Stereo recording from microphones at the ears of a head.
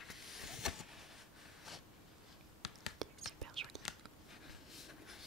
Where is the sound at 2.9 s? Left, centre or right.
Right.